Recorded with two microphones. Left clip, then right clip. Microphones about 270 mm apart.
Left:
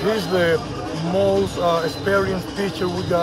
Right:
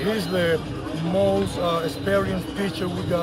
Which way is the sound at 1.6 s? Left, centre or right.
Centre.